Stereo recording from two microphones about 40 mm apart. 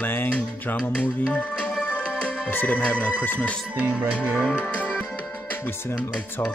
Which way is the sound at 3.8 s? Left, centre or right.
Right.